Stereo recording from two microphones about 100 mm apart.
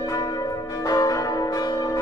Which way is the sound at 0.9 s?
35° left (ahead or behind).